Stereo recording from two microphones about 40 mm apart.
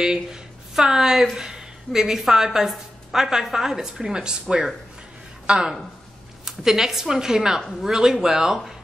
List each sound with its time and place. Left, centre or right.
0.0 s a woman's voice: centre